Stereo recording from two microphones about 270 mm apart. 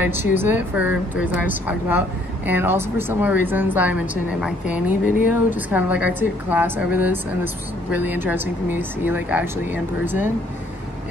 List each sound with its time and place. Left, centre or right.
0.0 s speech: centre
5.0 s speech: left
5.7 s a woman's voice: centre